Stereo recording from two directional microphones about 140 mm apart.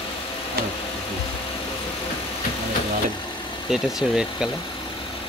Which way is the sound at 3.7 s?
5° right (ahead or behind).